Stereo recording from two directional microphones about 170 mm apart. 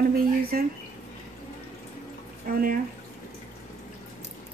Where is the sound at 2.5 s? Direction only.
55° right (ahead or behind).